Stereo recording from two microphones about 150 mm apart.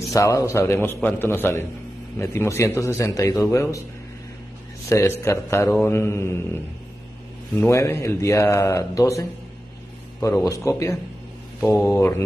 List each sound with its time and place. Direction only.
0.1 s a man's voice: 20° left (ahead or behind)
4.8 s a man's voice: 20° left (ahead or behind)